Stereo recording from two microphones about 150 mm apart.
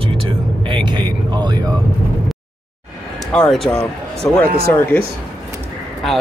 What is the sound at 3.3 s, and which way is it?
Speech, centre (ahead or behind).